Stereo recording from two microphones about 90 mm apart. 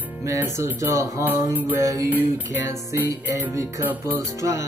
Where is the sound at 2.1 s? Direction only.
20° right (ahead or behind).